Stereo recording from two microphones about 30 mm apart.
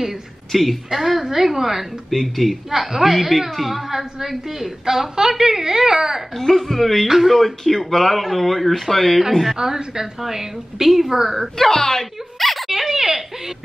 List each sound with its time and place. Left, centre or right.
0.5 s speech: centre
0.8 s a woman's voice: centre
2.0 s speech: centre
2.7 s a woman's voice: centre
6.3 s speech: centre
7.1 s a woman's voice: centre
7.3 s speech: centre
10.2 s a woman's voice: centre
11.5 s speech: centre
12.4 s a sound: centre
12.8 s a woman's voice: centre